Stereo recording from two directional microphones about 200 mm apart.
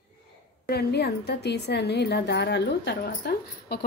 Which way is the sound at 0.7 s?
55° left (ahead or behind).